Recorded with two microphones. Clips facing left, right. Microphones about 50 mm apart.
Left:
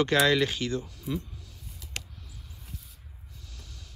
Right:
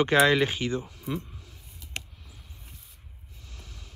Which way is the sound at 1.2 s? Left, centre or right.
Right.